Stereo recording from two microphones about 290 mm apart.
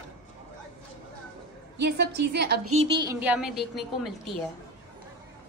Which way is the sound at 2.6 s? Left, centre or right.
Right.